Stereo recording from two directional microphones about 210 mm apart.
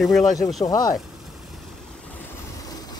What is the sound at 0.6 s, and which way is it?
Speech, 20° left (ahead or behind).